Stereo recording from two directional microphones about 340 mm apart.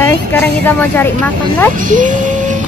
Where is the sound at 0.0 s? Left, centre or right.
Centre.